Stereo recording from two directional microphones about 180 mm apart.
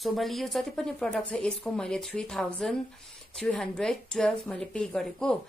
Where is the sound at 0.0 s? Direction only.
Centre (ahead or behind).